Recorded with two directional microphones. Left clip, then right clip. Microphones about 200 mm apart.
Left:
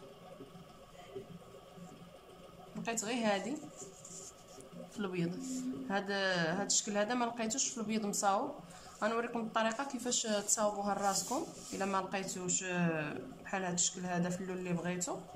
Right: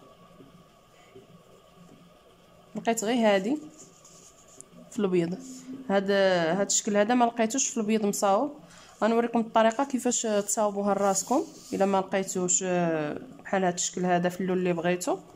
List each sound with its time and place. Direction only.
2.8 s speech: 40° right (ahead or behind)
4.9 s speech: 35° right (ahead or behind)